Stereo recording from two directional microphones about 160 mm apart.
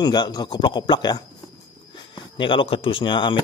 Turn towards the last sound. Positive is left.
turn(degrees=30)  # may be behind; listen again after turning